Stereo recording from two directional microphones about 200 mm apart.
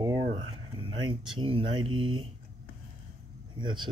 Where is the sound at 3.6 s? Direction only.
25° right (ahead or behind).